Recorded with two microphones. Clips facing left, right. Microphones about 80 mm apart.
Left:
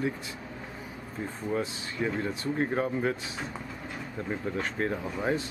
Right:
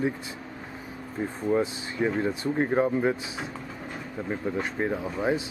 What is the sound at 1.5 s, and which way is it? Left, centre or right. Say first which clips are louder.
Speech: right 6 dB; centre.